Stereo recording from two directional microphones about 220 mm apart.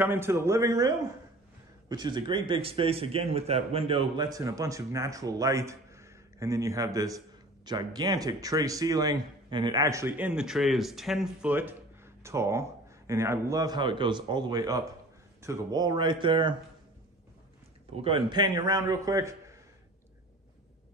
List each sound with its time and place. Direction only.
0.0 s speech: 10° right (ahead or behind)
18.0 s speech: 20° right (ahead or behind)